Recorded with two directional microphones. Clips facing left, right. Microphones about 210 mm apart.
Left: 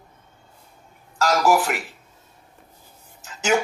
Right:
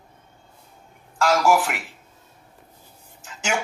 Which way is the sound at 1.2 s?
40° left (ahead or behind).